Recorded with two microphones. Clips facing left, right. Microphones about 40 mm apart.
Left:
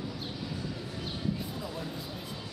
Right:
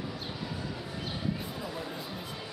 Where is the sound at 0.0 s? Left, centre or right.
Centre.